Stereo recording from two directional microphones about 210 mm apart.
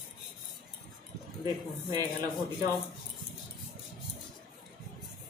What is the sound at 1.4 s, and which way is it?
Speech, 20° right (ahead or behind).